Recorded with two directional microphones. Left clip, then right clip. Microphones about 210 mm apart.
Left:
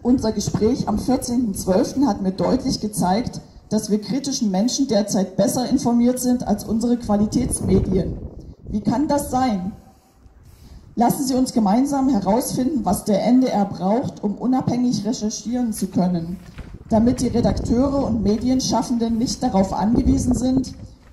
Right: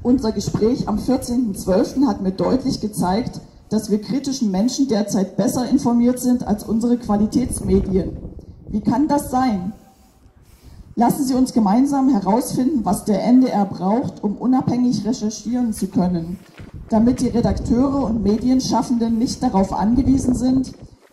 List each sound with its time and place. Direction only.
0.0 s a woman's voice: 45° left (ahead or behind)
11.0 s a woman's voice: 35° left (ahead or behind)